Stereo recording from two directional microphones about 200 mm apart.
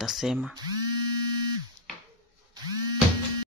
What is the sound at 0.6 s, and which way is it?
Speech, 20° right (ahead or behind).